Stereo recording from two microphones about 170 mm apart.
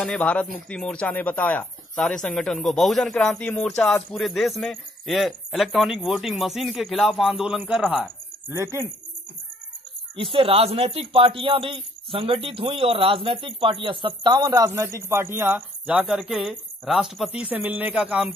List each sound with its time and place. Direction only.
0.0 s speech: 5° left (ahead or behind); by 8.8 s 15° right (ahead or behind)
10.1 s speech: 30° right (ahead or behind); by 18.3 s 5° right (ahead or behind)